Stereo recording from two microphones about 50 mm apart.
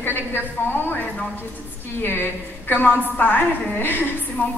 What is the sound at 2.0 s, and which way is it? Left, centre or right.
A woman's voice, left.